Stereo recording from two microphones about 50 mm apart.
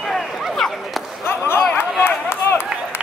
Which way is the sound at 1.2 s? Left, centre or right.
Left.